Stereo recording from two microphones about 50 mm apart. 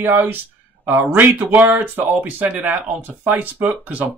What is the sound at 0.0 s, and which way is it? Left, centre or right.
Speech, right.